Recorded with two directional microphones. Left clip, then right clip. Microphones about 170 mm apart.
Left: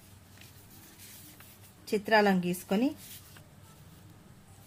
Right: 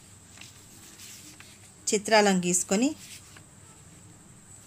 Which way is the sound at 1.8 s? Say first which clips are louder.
Right 3 dB; 25° right (ahead or behind).